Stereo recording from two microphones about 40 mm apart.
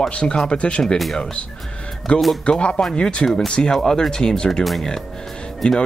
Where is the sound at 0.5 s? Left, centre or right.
Left.